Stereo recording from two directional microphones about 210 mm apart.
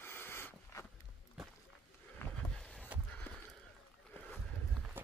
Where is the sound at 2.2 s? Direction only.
5° left (ahead or behind).